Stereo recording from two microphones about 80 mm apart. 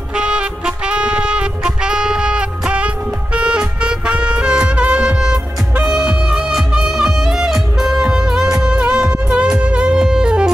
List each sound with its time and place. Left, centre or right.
0.2 s music: centre